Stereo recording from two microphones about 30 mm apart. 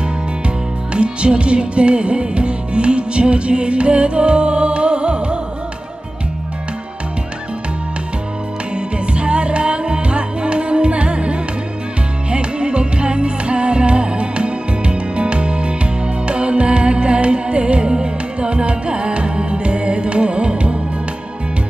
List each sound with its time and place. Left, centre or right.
0.9 s music: right
8.7 s music: right